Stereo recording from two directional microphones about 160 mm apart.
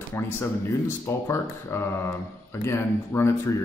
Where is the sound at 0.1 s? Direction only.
15° left (ahead or behind).